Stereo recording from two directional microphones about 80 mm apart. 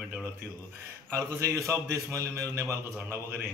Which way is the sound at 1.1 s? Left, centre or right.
Right.